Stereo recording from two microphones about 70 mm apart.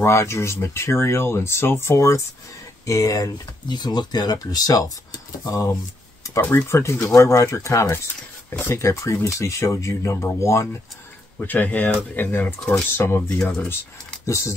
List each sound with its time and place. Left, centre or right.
0.0 s speech: left
2.8 s speech: left
6.2 s speech: left
11.3 s speech: left
12.5 s speech: centre
12.9 s speech: left
14.2 s speech: left